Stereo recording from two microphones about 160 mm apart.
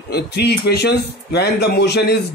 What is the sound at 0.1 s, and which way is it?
A man's voice, 90° left.